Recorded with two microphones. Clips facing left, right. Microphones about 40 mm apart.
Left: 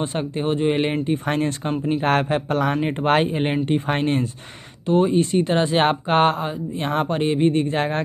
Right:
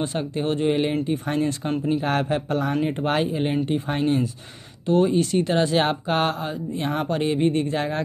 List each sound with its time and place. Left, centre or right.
0.4 s speech: centre
1.2 s speech: left
4.8 s speech: left
5.8 s speech: left